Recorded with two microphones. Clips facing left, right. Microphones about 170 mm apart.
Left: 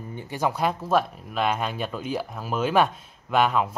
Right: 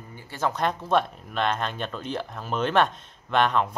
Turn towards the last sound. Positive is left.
turn(degrees=5)  # may be behind; listen again after turning